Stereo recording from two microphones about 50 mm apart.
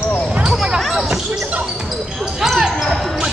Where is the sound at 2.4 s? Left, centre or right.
Centre.